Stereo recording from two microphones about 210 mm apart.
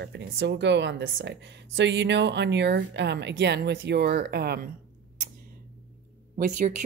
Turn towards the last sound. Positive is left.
turn(degrees=-35)  # may be behind; listen again after turning